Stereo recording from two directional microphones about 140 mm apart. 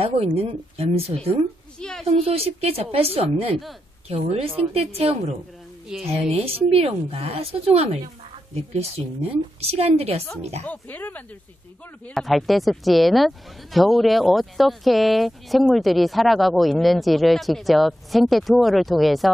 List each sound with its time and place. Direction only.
0.4 s a woman's voice: 45° right (ahead or behind)
1.8 s speech: 5° left (ahead or behind)
2.0 s a woman's voice: 45° right (ahead or behind)
10.6 s speech: 10° left (ahead or behind)
12.1 s speech: centre (ahead or behind)